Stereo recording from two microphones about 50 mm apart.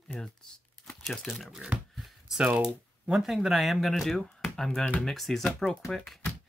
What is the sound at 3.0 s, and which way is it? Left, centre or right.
Speech, centre.